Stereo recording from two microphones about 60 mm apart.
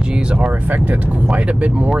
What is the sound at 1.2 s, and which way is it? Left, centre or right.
Speech, centre.